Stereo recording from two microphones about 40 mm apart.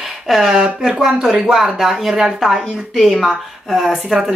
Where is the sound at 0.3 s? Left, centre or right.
Centre.